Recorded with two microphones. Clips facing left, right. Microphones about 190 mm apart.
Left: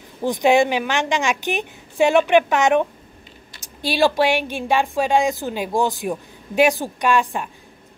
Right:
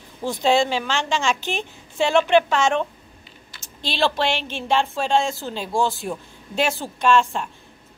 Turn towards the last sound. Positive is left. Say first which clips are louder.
# right 1 dB
turn(degrees=15)  # may be behind; listen again after turning